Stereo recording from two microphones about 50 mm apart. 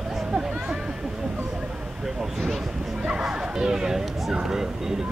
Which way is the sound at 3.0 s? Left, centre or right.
Right.